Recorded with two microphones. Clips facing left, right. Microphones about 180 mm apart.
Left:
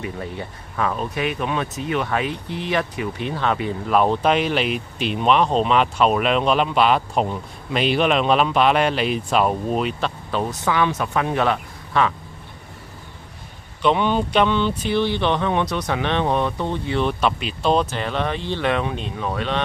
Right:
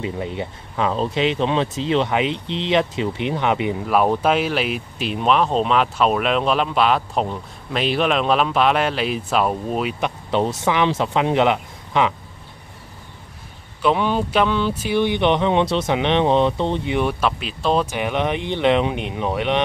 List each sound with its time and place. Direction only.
0.0 s speech: 20° right (ahead or behind)
3.8 s speech: 5° right (ahead or behind)
9.9 s speech: 20° right (ahead or behind)
13.8 s speech: centre (ahead or behind); by 17.0 s 20° right (ahead or behind)
17.0 s speech: centre (ahead or behind)
17.9 s speech: 15° right (ahead or behind)